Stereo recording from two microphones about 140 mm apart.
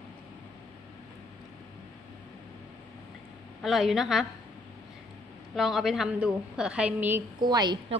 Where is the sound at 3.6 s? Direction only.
Centre (ahead or behind).